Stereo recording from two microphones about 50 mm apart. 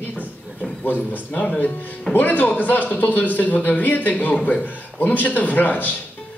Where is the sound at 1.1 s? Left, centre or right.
Left.